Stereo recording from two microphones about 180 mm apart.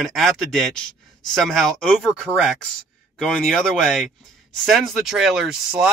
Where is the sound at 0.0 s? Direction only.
Centre (ahead or behind).